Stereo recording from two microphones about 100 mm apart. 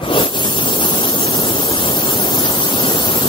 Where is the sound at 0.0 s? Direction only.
55° left (ahead or behind).